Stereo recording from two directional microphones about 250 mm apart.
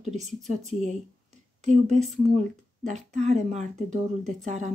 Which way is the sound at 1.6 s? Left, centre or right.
Right.